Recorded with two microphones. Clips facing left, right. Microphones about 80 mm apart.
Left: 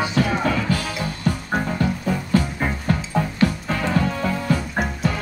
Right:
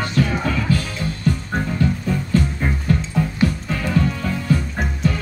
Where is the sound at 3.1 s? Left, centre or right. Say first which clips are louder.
Left 1 dB; left.